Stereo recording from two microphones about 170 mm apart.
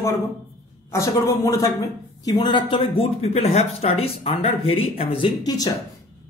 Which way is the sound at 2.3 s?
30° left (ahead or behind).